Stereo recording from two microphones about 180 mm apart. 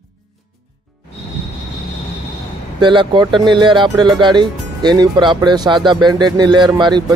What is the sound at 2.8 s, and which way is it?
Speech, 25° right (ahead or behind).